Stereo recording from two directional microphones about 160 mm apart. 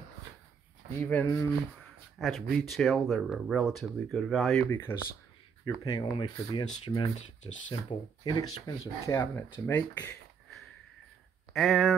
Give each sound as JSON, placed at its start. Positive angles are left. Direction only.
{"t": 1.0, "sound": "speech", "side_deg": 15}
{"t": 2.1, "sound": "speech", "side_deg": 0}
{"t": 4.6, "sound": "speech", "side_deg": 15}
{"t": 5.9, "sound": "speech", "side_deg": 25}
{"t": 8.2, "sound": "speech", "side_deg": 25}
{"t": 11.5, "sound": "speech", "side_deg": 0}